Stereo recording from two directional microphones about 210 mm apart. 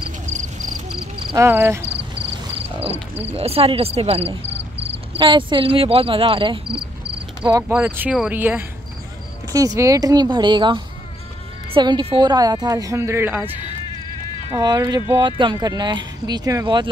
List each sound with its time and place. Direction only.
1.3 s a woman's voice: 10° right (ahead or behind)
3.3 s speech: 30° right (ahead or behind)
4.5 s a sound: 55° right (ahead or behind)
5.1 s a woman's voice: 25° right (ahead or behind)